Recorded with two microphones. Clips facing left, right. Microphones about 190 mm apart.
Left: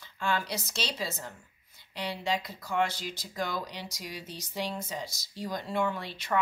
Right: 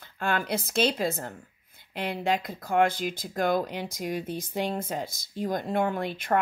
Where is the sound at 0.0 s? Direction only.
55° right (ahead or behind).